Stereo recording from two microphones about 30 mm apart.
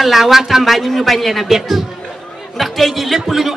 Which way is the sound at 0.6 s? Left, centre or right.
Centre.